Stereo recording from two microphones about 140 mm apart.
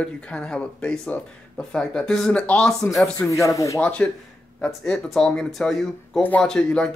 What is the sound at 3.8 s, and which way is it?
Speech, 10° left (ahead or behind).